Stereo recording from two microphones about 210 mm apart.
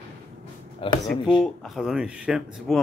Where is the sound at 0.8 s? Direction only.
25° left (ahead or behind).